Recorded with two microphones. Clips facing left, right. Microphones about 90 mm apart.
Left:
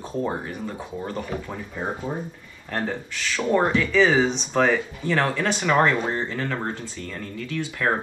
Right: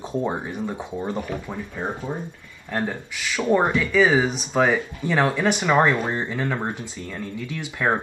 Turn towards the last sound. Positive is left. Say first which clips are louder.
# right 1 dB
turn(degrees=-15)  # may be behind; listen again after turning